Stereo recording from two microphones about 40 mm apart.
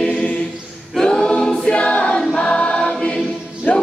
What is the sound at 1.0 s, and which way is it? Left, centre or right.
Choir, left.